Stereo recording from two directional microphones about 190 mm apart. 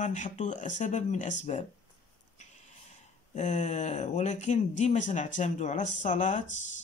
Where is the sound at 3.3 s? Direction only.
40° left (ahead or behind).